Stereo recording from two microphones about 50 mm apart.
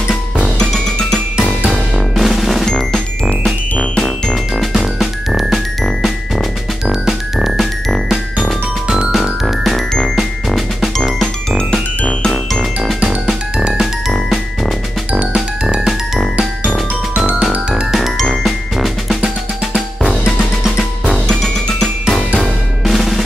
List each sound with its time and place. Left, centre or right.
1.7 s music: centre
2.6 s music: centre
3.3 s music: centre
4.6 s music: centre
8.8 s music: centre
17.5 s music: right
18.1 s music: centre
22.4 s drum: centre